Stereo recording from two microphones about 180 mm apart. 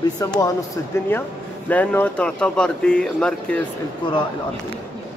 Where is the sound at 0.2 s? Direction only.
20° left (ahead or behind).